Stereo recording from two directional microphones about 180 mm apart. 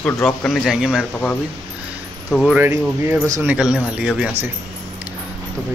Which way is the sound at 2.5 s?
10° right (ahead or behind).